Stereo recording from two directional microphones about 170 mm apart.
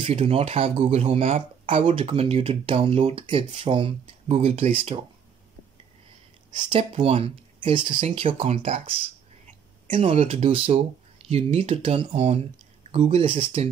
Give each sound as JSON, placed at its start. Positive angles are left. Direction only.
{"t": 0.0, "sound": "speech", "side_deg": -35}
{"t": 6.5, "sound": "speech", "side_deg": -30}